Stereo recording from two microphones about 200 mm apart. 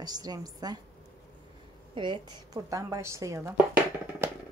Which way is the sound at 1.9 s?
25° right (ahead or behind).